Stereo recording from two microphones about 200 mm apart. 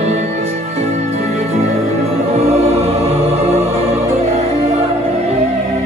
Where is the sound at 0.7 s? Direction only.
30° right (ahead or behind).